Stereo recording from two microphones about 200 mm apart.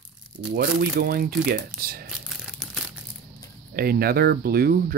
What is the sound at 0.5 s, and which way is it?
Speech, 45° right (ahead or behind).